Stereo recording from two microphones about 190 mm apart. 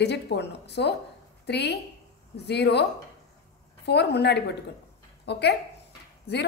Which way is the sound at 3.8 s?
60° left (ahead or behind).